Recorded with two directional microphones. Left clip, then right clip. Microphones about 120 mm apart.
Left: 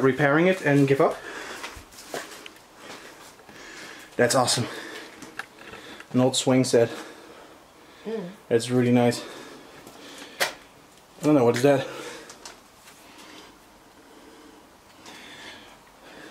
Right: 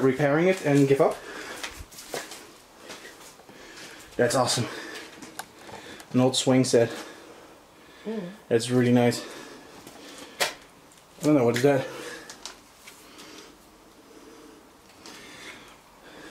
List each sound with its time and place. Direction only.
0.0 s speech: 30° left (ahead or behind)
4.2 s speech: 15° left (ahead or behind)
6.1 s speech: centre (ahead or behind)
8.5 s speech: centre (ahead or behind)
11.1 s speech: 10° left (ahead or behind)